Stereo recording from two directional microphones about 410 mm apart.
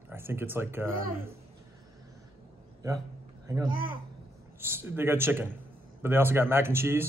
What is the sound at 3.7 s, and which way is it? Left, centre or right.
Speech, right.